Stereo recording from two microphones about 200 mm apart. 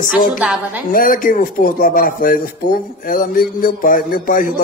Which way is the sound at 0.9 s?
45° left (ahead or behind).